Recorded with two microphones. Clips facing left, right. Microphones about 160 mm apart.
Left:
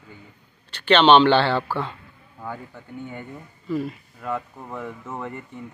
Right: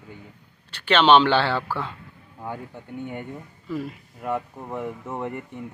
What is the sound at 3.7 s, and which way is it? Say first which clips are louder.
Speech: left 4 dB; 5° right (ahead or behind).